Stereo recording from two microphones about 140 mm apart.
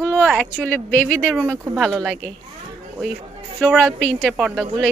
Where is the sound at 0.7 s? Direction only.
10° left (ahead or behind).